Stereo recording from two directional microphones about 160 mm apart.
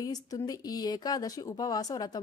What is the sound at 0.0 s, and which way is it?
A woman's voice, 20° left (ahead or behind).